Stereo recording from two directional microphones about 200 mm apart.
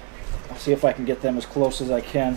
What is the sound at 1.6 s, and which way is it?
Speech, 30° right (ahead or behind).